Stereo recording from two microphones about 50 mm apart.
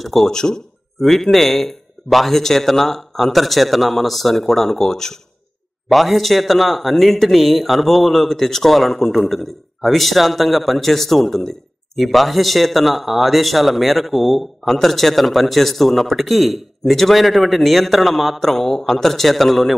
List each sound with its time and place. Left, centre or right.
0.0 s speech: centre